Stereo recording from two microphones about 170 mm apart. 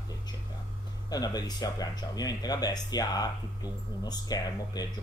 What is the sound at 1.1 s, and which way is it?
Speech, 20° left (ahead or behind).